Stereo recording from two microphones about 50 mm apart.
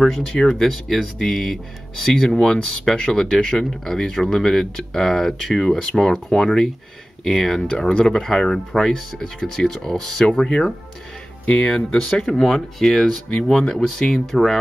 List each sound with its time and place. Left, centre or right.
0.0 s speech: centre
2.4 s speech: centre
2.8 s speech: centre
11.9 s speech: centre
12.3 s speech: centre